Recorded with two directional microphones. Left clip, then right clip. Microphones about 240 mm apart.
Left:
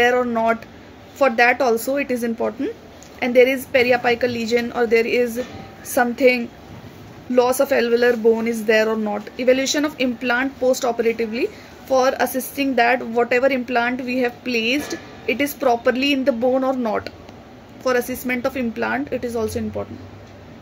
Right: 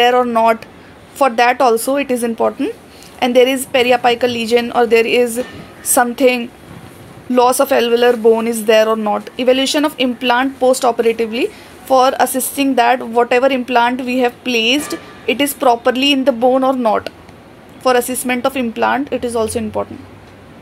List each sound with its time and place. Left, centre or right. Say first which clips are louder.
0.0 s speech: right 6 dB; centre
13.9 s a woman's voice: right 5 dB; right
14.2 s speech: right 7 dB; centre